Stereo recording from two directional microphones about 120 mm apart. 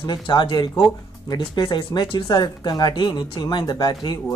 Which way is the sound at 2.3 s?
35° left (ahead or behind).